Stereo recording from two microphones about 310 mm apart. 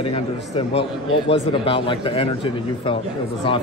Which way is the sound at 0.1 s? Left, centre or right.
Centre.